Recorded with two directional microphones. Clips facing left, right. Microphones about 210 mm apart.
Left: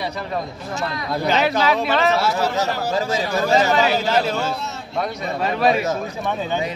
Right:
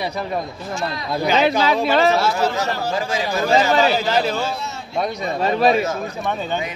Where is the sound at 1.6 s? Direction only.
30° right (ahead or behind).